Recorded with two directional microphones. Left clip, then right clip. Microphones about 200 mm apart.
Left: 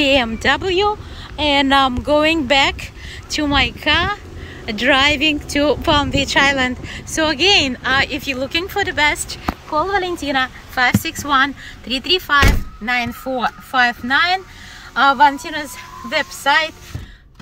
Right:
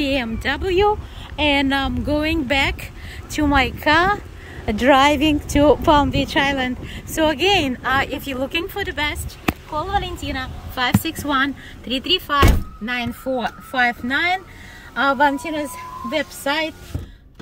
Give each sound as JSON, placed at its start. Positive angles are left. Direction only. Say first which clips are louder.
{"t": 0.0, "sound": "a woman's voice", "louder": "left 7 dB", "side_deg": -5}
{"t": 9.8, "sound": "a woman's voice", "louder": "left 4 dB", "side_deg": 25}
{"t": 10.7, "sound": "a woman's voice", "louder": "left 2 dB", "side_deg": -10}
{"t": 13.4, "sound": "speech", "louder": "left 5 dB", "side_deg": 60}
{"t": 15.0, "sound": "a woman's voice", "louder": "left 4 dB", "side_deg": 85}